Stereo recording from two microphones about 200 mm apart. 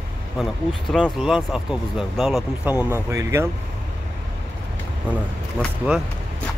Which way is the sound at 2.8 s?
15° right (ahead or behind).